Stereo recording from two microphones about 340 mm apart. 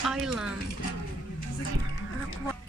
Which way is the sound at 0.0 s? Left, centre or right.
Centre.